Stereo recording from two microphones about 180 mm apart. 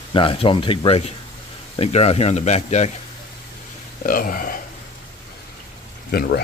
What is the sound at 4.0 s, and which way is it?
Speech, 50° left (ahead or behind).